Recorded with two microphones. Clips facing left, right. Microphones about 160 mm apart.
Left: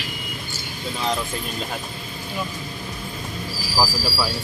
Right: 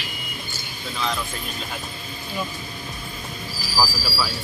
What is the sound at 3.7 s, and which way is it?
Speech, 25° left (ahead or behind).